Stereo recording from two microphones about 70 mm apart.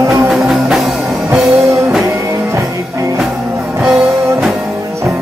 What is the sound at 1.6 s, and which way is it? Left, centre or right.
Music, right.